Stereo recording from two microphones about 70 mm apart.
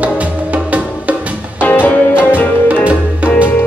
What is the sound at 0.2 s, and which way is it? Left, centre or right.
Music, centre.